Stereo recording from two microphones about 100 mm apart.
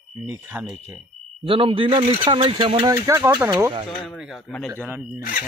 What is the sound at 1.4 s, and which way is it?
Speech, 65° right (ahead or behind).